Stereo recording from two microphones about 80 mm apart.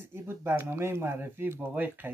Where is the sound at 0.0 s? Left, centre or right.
Right.